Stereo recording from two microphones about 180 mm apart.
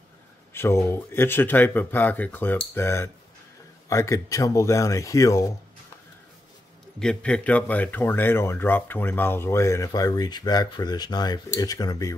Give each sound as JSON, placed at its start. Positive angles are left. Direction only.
{"t": 0.5, "sound": "speech", "side_deg": 15}
{"t": 7.0, "sound": "speech", "side_deg": 5}